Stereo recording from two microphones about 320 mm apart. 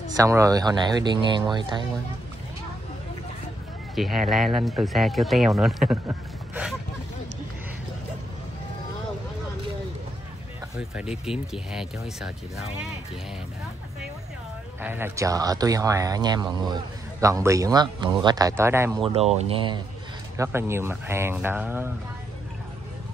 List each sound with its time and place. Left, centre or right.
0.2 s speech: centre
3.9 s speech: centre
10.8 s speech: centre
14.8 s speech: centre
19.1 s speech: centre